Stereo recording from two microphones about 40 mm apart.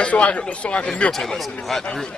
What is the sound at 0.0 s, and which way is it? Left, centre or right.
Speech, left.